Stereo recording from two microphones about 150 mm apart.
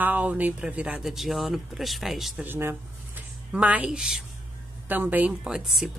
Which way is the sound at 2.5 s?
15° right (ahead or behind).